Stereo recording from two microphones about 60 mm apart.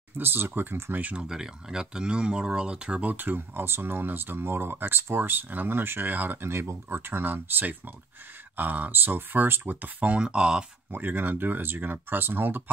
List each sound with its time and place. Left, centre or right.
0.2 s speech: right
0.9 s speech: right
1.3 s speech: centre
3.1 s speech: right; by 10.6 s centre
10.9 s speech: right